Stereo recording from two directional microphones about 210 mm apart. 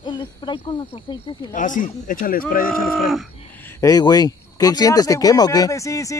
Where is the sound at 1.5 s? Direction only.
40° left (ahead or behind).